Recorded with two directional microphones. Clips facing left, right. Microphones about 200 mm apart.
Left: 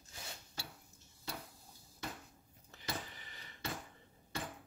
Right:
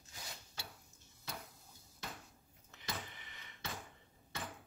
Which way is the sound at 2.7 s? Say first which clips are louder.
Left 2 dB; 35° left (ahead or behind).